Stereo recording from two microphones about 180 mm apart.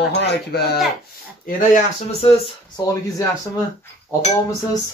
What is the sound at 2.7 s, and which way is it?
Speech, 20° left (ahead or behind).